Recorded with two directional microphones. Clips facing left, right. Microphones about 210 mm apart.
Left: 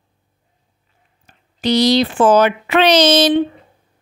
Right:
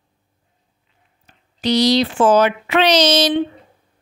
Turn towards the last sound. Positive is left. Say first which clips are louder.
# left 3 dB
turn(degrees=55)  # may be behind; listen again after turning